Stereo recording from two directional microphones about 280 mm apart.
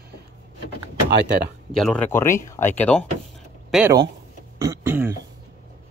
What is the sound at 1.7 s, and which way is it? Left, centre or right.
Speech, centre.